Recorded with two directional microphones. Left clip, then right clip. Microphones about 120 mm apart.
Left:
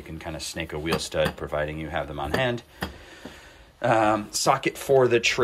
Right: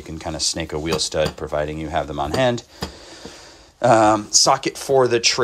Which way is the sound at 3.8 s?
40° right (ahead or behind).